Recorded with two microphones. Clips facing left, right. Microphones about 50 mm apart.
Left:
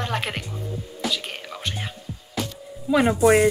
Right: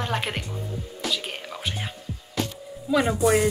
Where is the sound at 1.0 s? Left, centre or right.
Centre.